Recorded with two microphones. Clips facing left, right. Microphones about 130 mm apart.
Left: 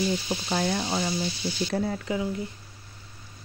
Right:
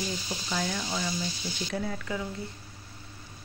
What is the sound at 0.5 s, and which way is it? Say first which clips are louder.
Speech: left 5 dB; 40° left (ahead or behind).